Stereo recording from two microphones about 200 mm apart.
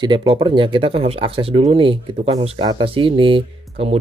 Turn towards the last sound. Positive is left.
turn(degrees=-25)  # may be behind; listen again after turning